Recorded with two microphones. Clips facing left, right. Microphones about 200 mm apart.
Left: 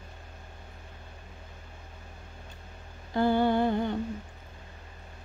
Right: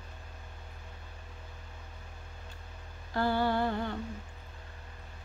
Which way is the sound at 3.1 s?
20° left (ahead or behind).